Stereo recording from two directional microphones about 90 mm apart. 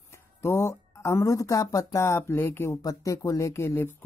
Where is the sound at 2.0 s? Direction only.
30° left (ahead or behind).